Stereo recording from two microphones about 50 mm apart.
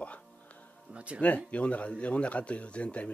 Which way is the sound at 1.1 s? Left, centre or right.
Left.